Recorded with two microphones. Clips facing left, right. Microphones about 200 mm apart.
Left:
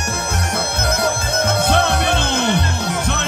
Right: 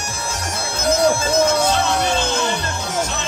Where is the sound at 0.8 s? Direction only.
60° left (ahead or behind).